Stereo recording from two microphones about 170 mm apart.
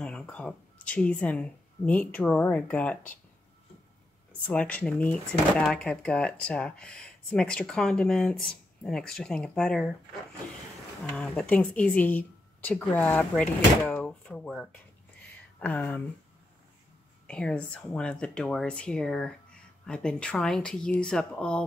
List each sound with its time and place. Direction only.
0.0 s speech: 5° left (ahead or behind)
4.5 s speech: 10° left (ahead or behind)
11.1 s a woman's voice: 5° left (ahead or behind)
13.9 s a sound: 5° left (ahead or behind)
15.6 s a woman's voice: 10° left (ahead or behind)
17.3 s speech: 5° left (ahead or behind)